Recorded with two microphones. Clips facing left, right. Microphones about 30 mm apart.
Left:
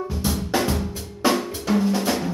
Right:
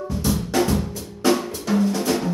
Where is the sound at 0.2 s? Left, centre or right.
Centre.